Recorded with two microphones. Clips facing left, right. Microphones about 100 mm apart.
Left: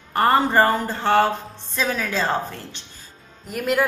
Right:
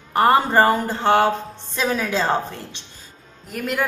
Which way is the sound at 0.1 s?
15° right (ahead or behind).